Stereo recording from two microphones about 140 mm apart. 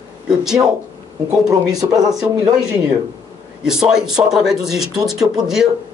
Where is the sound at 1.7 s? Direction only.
25° right (ahead or behind).